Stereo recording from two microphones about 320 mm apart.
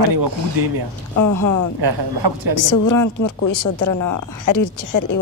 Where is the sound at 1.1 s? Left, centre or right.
Left.